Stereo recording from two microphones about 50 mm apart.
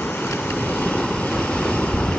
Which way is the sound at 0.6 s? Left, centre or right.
Left.